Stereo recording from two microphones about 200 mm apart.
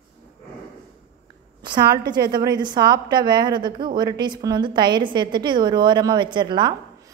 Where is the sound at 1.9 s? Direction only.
20° right (ahead or behind).